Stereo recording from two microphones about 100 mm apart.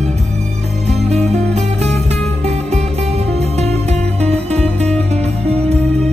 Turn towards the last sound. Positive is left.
turn(degrees=-90)